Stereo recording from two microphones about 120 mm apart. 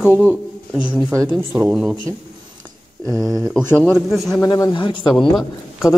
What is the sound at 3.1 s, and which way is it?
Speech, 30° right (ahead or behind).